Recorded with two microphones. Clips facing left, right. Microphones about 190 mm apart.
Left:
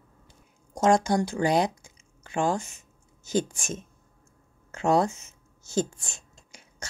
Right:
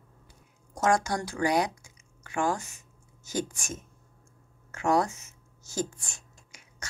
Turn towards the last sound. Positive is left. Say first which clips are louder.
# left 3 dB
turn(degrees=30)  # may be behind; listen again after turning